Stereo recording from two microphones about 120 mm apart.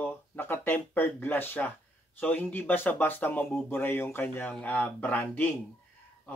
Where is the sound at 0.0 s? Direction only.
15° left (ahead or behind).